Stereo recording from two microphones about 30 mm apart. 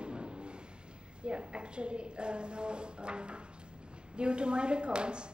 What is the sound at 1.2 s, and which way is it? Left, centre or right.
A woman's voice, right.